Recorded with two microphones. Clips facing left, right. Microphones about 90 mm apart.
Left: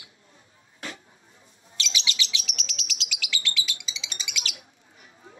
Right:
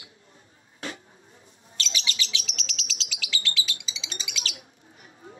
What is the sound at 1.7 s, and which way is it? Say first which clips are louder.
Bird: left 1 dB; 40° right (ahead or behind).